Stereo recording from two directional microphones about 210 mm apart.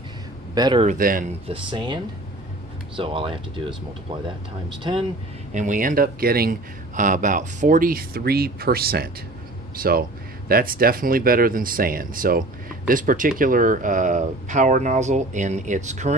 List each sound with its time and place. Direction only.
0.6 s speech: 20° right (ahead or behind)
0.8 s speech: 40° right (ahead or behind)
1.5 s speech: 20° right (ahead or behind)
3.0 s speech: 25° right (ahead or behind)
4.9 s speech: 20° right (ahead or behind)
5.5 s speech: 35° right (ahead or behind)